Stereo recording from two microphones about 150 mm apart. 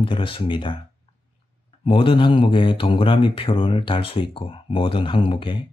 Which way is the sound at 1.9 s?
35° left (ahead or behind).